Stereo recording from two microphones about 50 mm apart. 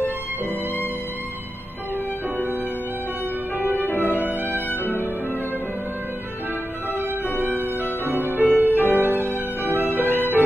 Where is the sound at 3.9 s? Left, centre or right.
Left.